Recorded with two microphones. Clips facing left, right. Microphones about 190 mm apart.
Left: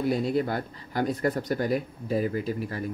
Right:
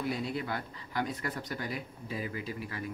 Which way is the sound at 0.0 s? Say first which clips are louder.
Left 9 dB; 40° left (ahead or behind).